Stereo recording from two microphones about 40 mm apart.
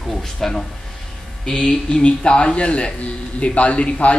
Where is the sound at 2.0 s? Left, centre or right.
Left.